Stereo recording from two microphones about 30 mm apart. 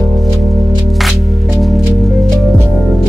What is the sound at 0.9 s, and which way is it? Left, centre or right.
Music, centre.